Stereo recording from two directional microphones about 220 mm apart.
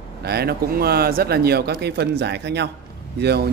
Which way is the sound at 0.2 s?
45° right (ahead or behind).